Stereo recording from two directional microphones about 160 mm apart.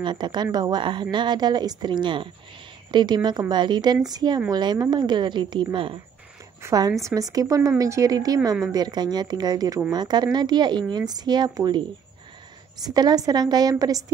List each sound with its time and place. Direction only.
0.0 s speech: 30° right (ahead or behind)
12.8 s speech: 25° right (ahead or behind)